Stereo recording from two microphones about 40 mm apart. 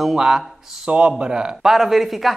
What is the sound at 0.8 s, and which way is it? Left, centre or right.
Speech, right.